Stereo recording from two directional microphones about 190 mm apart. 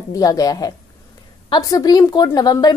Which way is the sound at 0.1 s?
20° left (ahead or behind).